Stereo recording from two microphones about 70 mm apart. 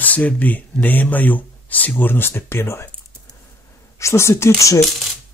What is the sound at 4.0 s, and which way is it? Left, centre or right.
Speech, left.